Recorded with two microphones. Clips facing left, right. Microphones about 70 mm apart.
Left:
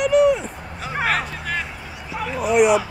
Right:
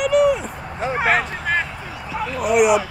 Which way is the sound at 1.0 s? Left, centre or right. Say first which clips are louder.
Right 3 dB; right.